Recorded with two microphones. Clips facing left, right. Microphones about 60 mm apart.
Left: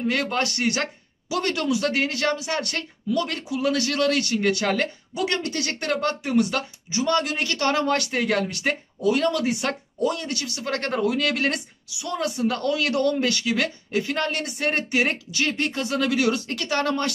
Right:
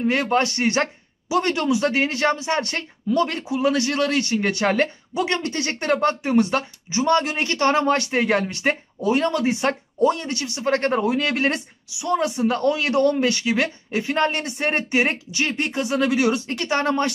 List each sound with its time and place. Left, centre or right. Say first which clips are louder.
0.0 s speech: right 4 dB; right